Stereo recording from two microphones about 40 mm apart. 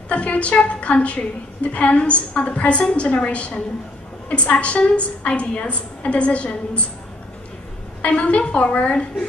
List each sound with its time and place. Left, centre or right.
0.1 s a woman's voice: left
8.0 s a woman's voice: left